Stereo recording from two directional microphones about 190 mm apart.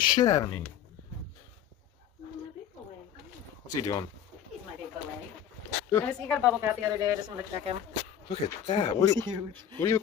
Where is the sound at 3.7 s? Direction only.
20° left (ahead or behind).